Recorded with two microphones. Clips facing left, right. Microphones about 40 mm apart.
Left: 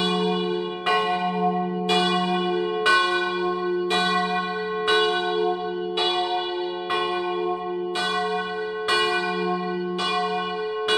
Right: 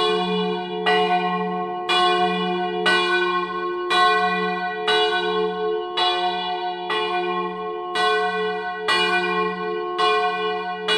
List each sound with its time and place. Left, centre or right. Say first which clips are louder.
0.0 s church bell: right 2 dB; right
8.0 s church bell: right 7 dB; right